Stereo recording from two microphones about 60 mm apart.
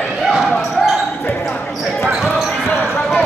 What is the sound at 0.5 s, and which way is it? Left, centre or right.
Basketball bounce, centre.